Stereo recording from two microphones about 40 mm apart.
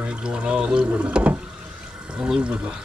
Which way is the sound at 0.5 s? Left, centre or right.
Right.